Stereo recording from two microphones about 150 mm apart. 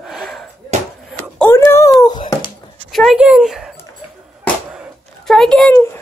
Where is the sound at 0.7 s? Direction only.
50° right (ahead or behind).